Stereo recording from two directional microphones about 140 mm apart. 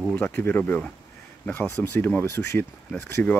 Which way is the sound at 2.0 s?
15° left (ahead or behind).